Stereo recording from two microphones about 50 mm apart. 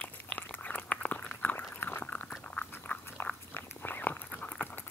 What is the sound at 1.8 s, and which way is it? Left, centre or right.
Dog, left.